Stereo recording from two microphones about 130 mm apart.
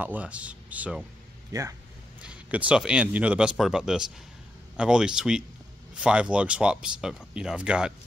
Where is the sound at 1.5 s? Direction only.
25° right (ahead or behind).